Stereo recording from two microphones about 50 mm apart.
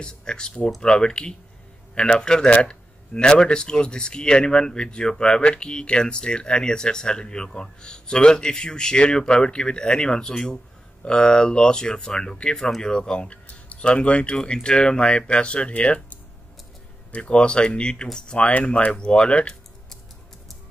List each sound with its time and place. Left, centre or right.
0.0 s speech: centre